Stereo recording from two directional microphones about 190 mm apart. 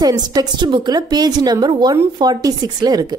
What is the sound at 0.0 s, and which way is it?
Speech, 20° right (ahead or behind).